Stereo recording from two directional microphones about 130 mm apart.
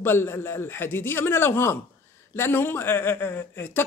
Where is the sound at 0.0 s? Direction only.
20° left (ahead or behind).